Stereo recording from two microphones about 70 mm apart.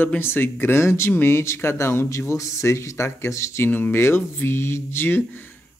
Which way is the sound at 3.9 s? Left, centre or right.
Left.